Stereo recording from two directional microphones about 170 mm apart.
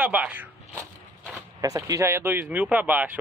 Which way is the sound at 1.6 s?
20° right (ahead or behind).